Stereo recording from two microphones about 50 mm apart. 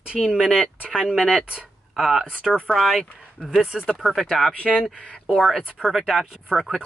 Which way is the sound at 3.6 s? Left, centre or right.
Right.